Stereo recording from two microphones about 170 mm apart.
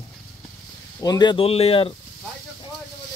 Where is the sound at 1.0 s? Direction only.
25° left (ahead or behind).